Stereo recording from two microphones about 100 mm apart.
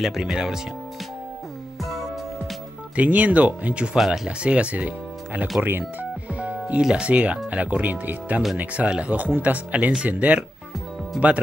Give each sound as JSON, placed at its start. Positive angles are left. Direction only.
{"t": 0.0, "sound": "speech", "side_deg": -5}
{"t": 3.0, "sound": "speech", "side_deg": -15}